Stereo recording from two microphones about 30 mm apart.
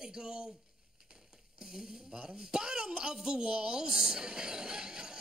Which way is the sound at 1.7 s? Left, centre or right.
Right.